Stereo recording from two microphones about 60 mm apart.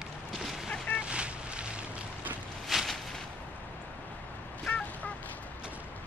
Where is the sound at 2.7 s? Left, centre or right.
Centre.